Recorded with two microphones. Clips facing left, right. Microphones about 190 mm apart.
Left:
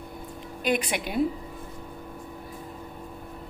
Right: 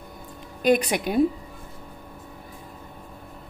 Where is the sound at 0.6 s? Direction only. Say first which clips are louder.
Right 6 dB; 40° right (ahead or behind).